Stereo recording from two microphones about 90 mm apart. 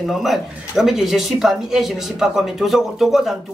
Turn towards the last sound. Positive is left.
turn(degrees=0)  # may be behind; listen again after turning